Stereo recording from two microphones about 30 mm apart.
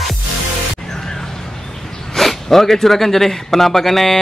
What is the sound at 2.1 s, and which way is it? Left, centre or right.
A man's voice, centre.